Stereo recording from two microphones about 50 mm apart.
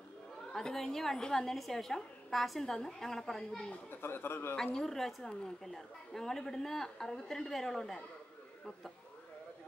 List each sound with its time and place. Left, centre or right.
0.5 s a woman's voice: centre
3.9 s a man's voice: left
4.7 s a woman's voice: centre